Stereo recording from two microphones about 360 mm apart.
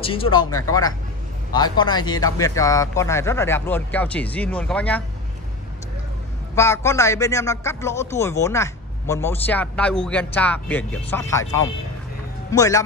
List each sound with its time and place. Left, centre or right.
0.0 s a man's voice: centre
6.5 s a man's voice: centre